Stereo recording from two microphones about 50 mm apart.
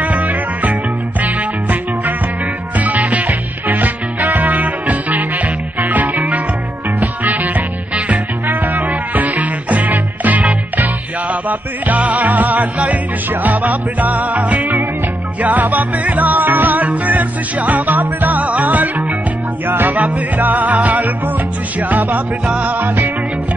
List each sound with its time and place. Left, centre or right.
0.0 s music: right
19.7 s music: right
20.0 s music: right